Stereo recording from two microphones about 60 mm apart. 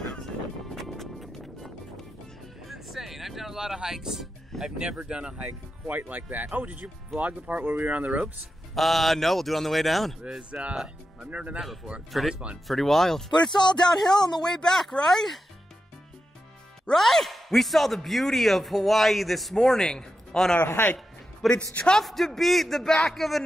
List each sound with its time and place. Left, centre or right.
0.7 s music: centre
2.7 s speech: centre; by 8.3 s right
8.7 s a man's voice: centre
10.3 s speech: centre
12.1 s a man's voice: centre
16.9 s a man's voice: centre
20.6 s speech: left
21.4 s a man's voice: centre
21.7 s speech: centre
22.0 s a man's voice: centre